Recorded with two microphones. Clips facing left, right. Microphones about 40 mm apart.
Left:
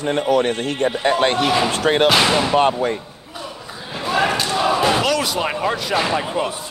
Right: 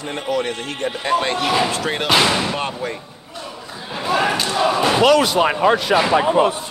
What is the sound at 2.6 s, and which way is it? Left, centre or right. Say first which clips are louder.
Speech: left 8 dB; left.